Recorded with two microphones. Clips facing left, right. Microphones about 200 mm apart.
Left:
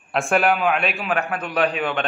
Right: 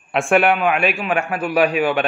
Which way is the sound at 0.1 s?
Centre (ahead or behind).